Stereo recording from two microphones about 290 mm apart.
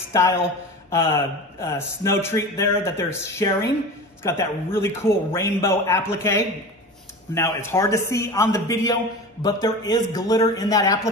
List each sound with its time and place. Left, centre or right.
0.8 s speech: centre